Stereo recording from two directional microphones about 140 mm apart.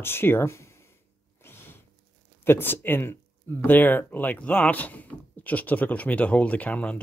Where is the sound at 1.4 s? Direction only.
15° left (ahead or behind).